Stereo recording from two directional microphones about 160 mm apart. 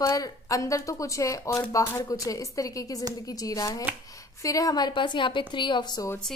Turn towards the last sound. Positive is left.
turn(degrees=25)  # may be behind; listen again after turning